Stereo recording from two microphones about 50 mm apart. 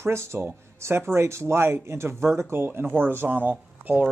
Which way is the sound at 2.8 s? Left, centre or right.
Right.